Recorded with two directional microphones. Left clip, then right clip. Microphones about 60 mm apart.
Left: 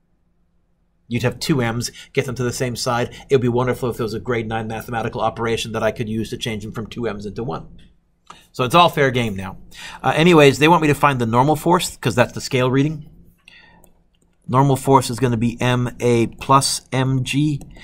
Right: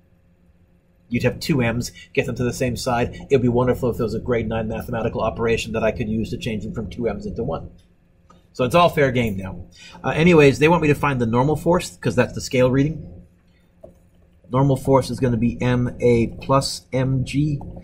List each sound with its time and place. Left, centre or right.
1.1 s speech: centre; by 12.9 s left
14.5 s speech: left